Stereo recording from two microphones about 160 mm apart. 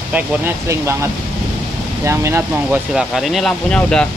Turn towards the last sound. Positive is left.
turn(degrees=5)  # may be behind; listen again after turning